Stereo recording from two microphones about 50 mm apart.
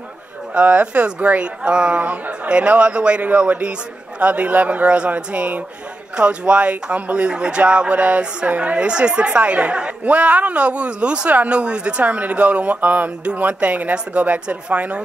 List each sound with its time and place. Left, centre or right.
0.6 s speech: right